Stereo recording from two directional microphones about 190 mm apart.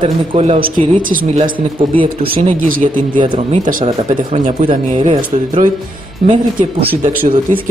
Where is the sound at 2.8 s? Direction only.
30° right (ahead or behind).